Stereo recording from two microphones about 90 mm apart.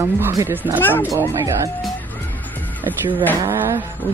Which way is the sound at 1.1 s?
35° right (ahead or behind).